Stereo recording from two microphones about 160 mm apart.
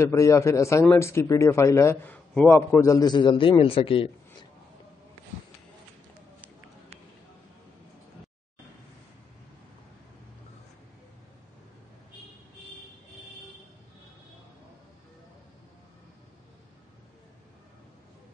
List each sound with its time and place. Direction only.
0.0 s a man's voice: 20° left (ahead or behind); by 4.5 s 35° left (ahead or behind)